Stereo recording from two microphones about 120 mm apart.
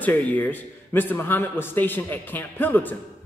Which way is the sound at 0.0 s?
15° left (ahead or behind).